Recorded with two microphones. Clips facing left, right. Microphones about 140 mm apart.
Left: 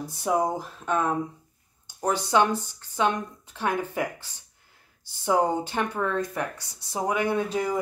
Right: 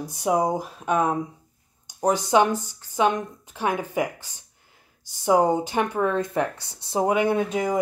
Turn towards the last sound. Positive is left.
turn(degrees=-20)  # may be behind; listen again after turning